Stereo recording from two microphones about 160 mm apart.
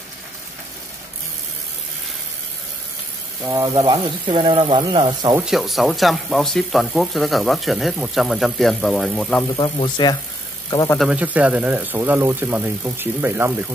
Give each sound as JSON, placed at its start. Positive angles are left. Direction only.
{"t": 3.4, "sound": "speech", "side_deg": -15}
{"t": 3.9, "sound": "speech", "side_deg": -30}
{"t": 5.3, "sound": "speech", "side_deg": -5}
{"t": 9.6, "sound": "speech", "side_deg": 30}
{"t": 11.0, "sound": "speech", "side_deg": -5}